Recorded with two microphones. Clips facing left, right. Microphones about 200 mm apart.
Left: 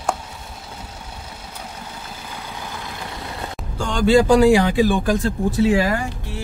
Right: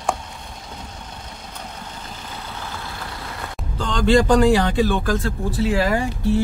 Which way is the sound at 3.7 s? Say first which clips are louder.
Left 2 dB; 10° left (ahead or behind).